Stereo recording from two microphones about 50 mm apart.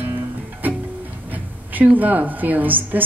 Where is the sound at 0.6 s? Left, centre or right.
Right.